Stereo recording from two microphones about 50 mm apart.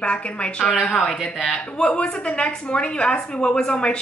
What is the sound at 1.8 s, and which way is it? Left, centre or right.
A woman's voice, left.